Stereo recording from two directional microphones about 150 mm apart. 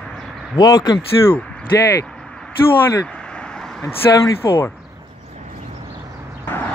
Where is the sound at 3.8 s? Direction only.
15° left (ahead or behind).